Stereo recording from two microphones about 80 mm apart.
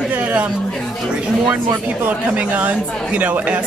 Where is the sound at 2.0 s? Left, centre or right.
Centre.